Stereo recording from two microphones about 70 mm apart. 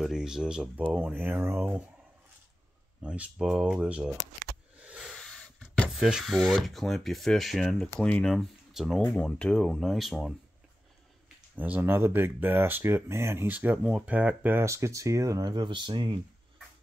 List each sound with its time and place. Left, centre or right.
0.0 s speech: centre
1.1 s speech: right
3.0 s speech: centre
5.9 s speech: centre
7.8 s speech: centre
8.3 s speech: centre
9.1 s speech: centre
11.5 s speech: right
13.5 s speech: right
14.6 s speech: right